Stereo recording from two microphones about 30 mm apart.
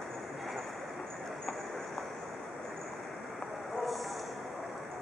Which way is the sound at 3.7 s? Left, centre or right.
Centre.